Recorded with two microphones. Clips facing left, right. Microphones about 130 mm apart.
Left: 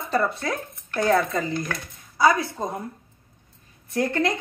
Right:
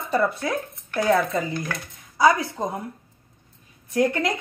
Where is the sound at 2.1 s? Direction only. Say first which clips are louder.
Right 1 dB; 20° right (ahead or behind).